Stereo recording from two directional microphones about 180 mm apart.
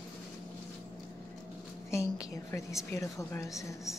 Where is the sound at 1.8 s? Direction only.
15° left (ahead or behind).